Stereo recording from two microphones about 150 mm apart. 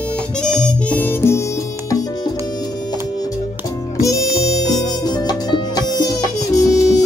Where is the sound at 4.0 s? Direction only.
20° left (ahead or behind).